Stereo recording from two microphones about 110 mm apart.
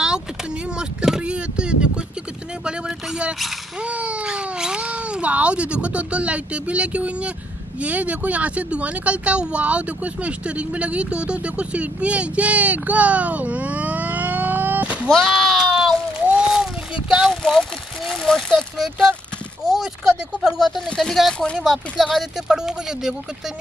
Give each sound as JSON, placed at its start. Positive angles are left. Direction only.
{"t": 0.7, "sound": "boat", "side_deg": -5}
{"t": 3.2, "sound": "speech", "side_deg": -5}
{"t": 15.0, "sound": "a sound", "side_deg": 5}
{"t": 17.4, "sound": "speech", "side_deg": 5}